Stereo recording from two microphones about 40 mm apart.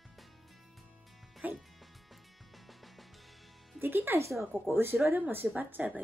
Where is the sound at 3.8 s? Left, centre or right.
Right.